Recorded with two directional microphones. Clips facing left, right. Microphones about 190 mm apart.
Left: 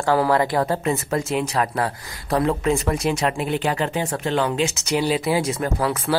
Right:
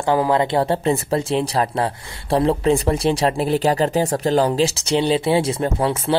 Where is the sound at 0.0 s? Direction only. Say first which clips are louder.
Right 1 dB; 20° right (ahead or behind).